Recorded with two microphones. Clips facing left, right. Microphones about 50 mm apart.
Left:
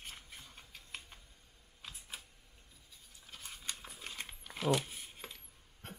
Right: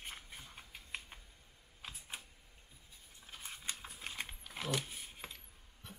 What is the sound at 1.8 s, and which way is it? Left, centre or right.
Typing, centre.